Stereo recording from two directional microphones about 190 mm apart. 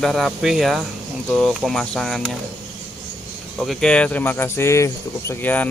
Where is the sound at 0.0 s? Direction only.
Centre (ahead or behind).